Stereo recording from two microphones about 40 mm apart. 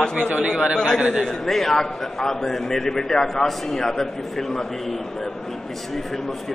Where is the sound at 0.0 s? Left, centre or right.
Left.